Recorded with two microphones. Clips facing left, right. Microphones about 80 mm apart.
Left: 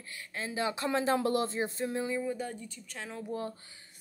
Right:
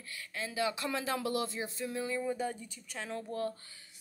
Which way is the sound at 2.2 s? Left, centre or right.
Centre.